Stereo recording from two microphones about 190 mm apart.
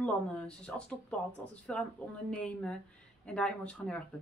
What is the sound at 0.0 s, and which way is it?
Speech, 5° left (ahead or behind).